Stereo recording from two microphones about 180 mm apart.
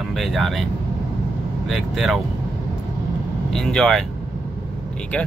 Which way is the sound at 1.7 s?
Centre (ahead or behind).